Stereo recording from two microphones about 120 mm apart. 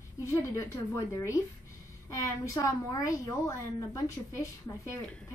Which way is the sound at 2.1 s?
25° left (ahead or behind).